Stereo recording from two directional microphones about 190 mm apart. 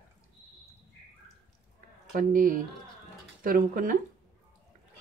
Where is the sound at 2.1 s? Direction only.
45° right (ahead or behind).